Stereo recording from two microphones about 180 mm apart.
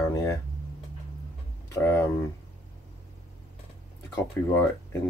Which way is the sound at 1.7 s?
15° left (ahead or behind).